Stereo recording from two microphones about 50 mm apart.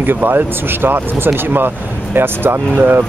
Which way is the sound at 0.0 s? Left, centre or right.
Right.